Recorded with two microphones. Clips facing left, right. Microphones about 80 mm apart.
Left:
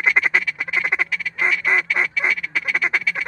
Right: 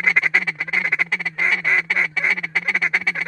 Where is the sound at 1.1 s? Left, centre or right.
Right.